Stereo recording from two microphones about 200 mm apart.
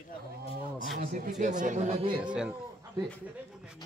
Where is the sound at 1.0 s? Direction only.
45° right (ahead or behind); by 2.2 s 30° right (ahead or behind).